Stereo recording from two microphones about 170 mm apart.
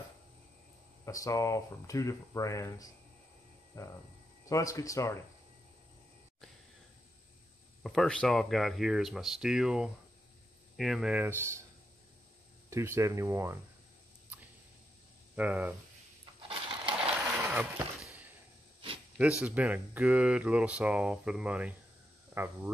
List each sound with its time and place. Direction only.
1.0 s speech: 20° left (ahead or behind)
4.5 s speech: 20° left (ahead or behind)
7.8 s speech: centre (ahead or behind); by 11.6 s 15° right (ahead or behind)
12.6 s speech: 15° right (ahead or behind)
15.3 s speech: 10° right (ahead or behind)
16.4 s a sound: 30° right (ahead or behind)
17.4 s a sound: 10° right (ahead or behind)
19.1 s speech: 5° right (ahead or behind)